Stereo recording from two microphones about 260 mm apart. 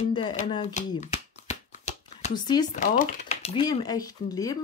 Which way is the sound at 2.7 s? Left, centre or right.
Left.